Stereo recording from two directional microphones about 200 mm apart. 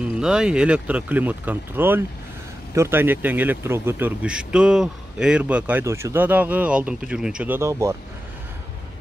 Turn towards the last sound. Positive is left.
turn(degrees=-15)  # may be behind; listen again after turning